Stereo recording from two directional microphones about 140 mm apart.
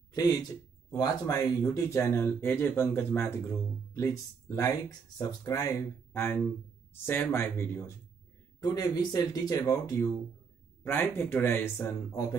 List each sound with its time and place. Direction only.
0.1 s speech: 25° left (ahead or behind)